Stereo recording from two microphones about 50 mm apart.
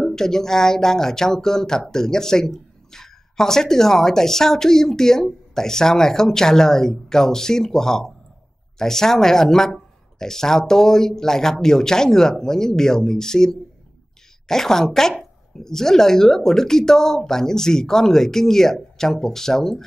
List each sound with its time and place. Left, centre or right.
0.0 s speech: centre